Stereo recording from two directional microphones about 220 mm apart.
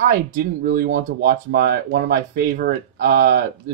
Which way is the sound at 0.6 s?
35° right (ahead or behind).